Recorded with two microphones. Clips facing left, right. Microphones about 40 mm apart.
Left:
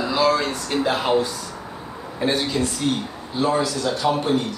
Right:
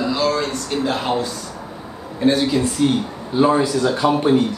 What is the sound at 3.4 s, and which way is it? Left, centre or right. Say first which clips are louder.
A man's voice: right 5 dB; right.